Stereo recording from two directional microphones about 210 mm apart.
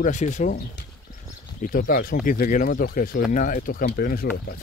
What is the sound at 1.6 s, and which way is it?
Speech, 40° left (ahead or behind).